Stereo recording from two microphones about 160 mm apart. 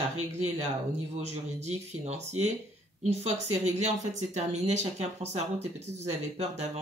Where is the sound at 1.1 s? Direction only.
45° right (ahead or behind).